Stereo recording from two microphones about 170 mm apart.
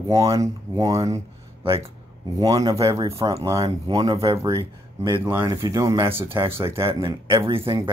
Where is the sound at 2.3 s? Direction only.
20° right (ahead or behind).